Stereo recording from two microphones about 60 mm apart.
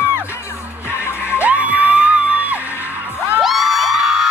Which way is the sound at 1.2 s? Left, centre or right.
Right.